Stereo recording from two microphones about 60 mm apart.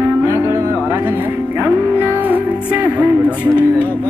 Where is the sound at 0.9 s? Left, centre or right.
Right.